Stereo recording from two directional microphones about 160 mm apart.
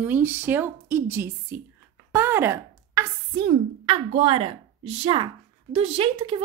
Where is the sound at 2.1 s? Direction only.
15° right (ahead or behind).